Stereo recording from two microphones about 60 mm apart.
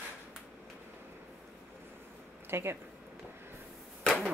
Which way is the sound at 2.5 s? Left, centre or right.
Right.